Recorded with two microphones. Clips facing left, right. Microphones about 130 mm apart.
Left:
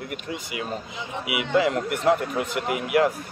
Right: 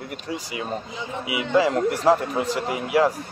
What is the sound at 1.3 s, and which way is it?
Speech, 30° right (ahead or behind).